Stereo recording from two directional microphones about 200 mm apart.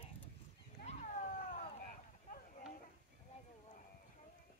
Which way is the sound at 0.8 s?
35° left (ahead or behind).